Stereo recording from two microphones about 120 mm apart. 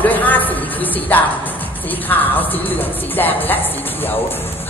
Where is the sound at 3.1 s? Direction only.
15° left (ahead or behind).